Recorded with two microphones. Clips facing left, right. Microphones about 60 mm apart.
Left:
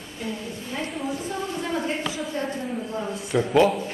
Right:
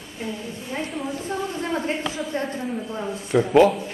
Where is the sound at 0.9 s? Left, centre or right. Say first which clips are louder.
Even; centre.